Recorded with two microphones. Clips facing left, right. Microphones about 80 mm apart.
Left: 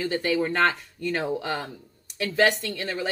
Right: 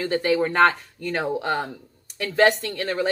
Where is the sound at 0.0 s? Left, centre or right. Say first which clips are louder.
Right 3 dB; right.